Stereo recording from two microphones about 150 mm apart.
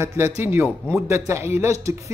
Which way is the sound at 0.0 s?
15° right (ahead or behind).